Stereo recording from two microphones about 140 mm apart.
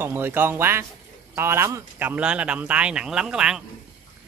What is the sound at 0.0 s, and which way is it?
Speech, 15° right (ahead or behind).